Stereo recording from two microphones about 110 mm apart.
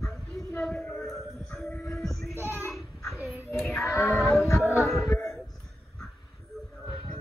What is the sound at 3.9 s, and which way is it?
Child singing, 25° left (ahead or behind).